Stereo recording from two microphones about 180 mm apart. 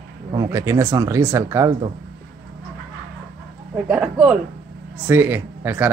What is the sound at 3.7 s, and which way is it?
Speech, 5° right (ahead or behind).